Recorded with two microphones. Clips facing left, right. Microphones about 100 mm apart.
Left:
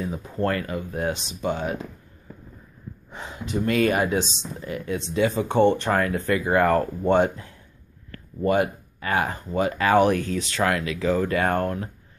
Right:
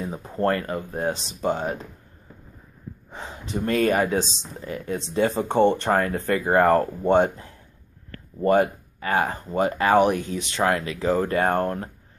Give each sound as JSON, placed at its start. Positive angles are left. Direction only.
{"t": 0.0, "sound": "speech", "side_deg": -35}
{"t": 3.1, "sound": "speech", "side_deg": -35}
{"t": 4.2, "sound": "speech", "side_deg": -35}